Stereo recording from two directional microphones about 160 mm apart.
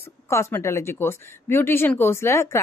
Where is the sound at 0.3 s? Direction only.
15° left (ahead or behind).